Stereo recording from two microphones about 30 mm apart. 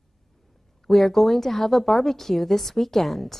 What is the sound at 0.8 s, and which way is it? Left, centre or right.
Speech, centre.